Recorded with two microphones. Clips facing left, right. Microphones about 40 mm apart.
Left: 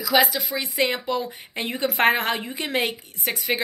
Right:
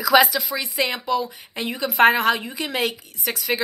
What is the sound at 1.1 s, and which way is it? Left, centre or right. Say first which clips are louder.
Speech: right 3 dB; left.